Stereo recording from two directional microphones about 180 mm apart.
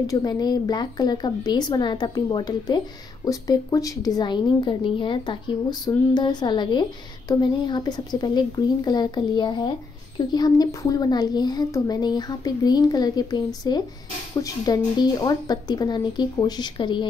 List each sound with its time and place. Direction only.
0.0 s a woman's voice: 20° left (ahead or behind)